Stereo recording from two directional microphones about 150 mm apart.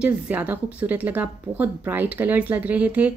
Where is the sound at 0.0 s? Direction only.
10° right (ahead or behind).